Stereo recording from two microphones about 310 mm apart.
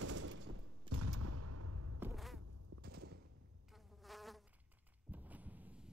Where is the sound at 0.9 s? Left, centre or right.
Right.